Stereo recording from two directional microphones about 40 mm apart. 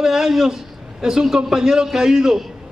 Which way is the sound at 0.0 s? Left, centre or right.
Centre.